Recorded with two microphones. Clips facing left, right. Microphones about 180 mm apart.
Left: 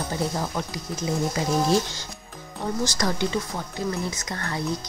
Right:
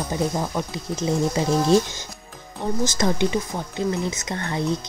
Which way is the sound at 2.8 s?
20° right (ahead or behind).